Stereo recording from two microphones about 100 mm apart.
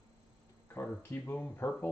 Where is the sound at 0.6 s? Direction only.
20° left (ahead or behind).